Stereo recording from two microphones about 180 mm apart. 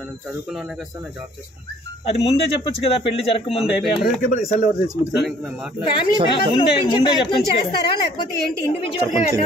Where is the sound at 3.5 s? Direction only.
5° right (ahead or behind).